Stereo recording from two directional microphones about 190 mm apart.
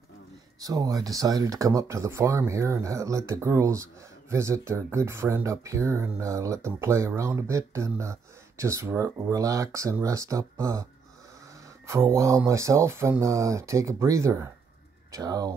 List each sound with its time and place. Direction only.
0.6 s speech: 20° right (ahead or behind)
11.9 s speech: 15° right (ahead or behind)